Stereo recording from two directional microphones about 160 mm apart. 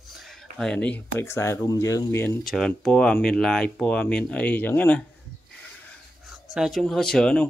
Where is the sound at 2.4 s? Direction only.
Centre (ahead or behind).